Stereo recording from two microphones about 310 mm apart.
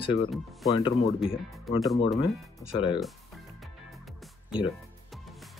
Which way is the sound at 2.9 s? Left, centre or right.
Centre.